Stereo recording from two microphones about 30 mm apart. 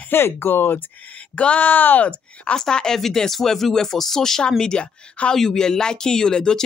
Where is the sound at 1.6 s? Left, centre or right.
Left.